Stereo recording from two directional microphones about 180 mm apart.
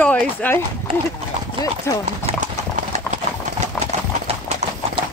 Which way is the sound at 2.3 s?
45° right (ahead or behind).